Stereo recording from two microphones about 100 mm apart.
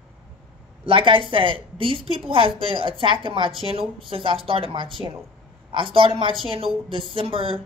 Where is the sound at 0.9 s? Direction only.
60° right (ahead or behind).